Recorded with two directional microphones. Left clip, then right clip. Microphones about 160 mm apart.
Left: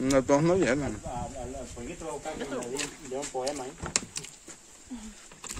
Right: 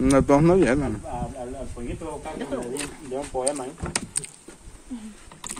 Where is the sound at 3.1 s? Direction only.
5° left (ahead or behind).